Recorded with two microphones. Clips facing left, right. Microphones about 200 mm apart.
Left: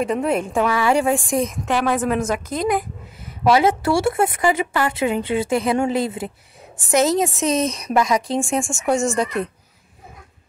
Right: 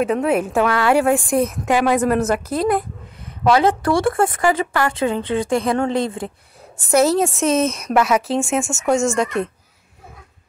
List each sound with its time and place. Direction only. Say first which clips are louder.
0.0 s a woman's voice: right 2 dB; centre (ahead or behind)
2.7 s a sound: right 2 dB; 5° left (ahead or behind)
3.6 s a woman's voice: right 1 dB; 5° left (ahead or behind)
4.0 s speech: right 1 dB; 25° left (ahead or behind)
4.9 s a woman's voice: even; 10° left (ahead or behind)